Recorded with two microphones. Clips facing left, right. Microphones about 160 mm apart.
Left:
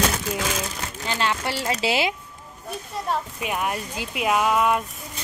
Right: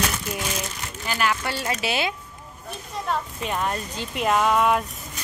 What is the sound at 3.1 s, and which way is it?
Speech, 10° left (ahead or behind).